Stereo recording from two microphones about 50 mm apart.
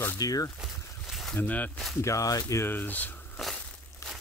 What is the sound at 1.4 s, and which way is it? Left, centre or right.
Speech, left.